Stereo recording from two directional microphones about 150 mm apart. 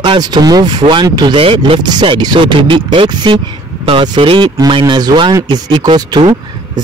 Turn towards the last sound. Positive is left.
turn(degrees=-30)  # may be behind; listen again after turning